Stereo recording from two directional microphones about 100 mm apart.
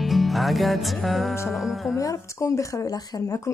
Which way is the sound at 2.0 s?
35° left (ahead or behind).